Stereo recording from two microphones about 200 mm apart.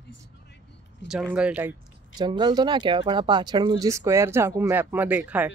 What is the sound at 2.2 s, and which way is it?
Speech, 20° right (ahead or behind).